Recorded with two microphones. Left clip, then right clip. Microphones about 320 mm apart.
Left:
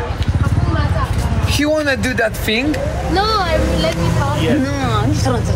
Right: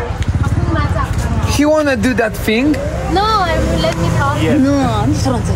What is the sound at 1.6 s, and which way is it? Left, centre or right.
Speech, right.